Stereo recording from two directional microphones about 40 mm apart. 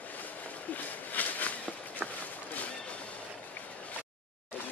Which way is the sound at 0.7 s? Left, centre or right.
Left.